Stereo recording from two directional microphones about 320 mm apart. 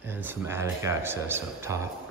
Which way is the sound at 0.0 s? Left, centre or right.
Centre.